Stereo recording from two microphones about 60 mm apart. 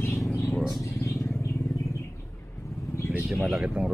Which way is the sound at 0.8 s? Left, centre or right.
Left.